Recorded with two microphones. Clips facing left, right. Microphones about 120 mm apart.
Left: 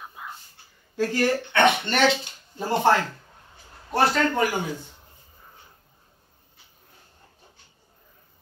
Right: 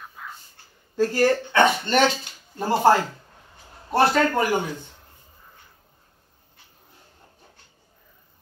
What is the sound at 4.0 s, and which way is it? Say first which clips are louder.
Speech: right 2 dB; 45° right (ahead or behind).